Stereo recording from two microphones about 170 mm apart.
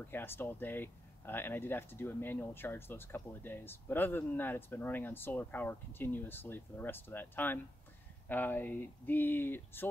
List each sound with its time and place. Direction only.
0.0 s speech: 10° left (ahead or behind)